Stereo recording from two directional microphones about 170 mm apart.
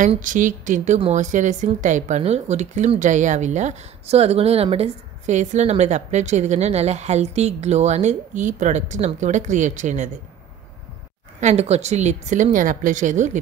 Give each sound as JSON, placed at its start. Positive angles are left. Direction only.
{"t": 0.2, "sound": "speech", "side_deg": -50}
{"t": 11.4, "sound": "a woman's voice", "side_deg": -40}